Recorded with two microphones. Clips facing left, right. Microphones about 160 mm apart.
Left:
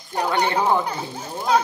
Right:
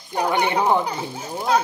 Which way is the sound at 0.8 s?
5° right (ahead or behind).